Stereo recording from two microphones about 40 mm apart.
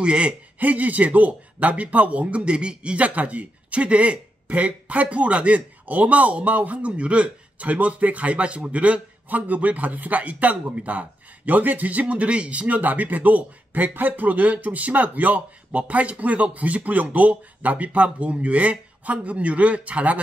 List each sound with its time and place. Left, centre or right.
0.0 s speech: right
0.6 s speech: right
3.1 s speech: right
6.9 s speech: right